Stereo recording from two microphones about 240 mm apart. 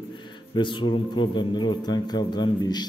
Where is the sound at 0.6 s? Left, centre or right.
Centre.